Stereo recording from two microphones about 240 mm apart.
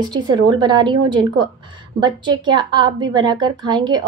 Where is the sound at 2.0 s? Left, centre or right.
Centre.